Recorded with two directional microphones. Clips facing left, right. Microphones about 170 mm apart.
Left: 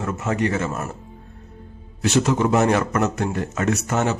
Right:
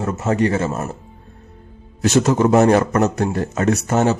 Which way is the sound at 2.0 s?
40° right (ahead or behind).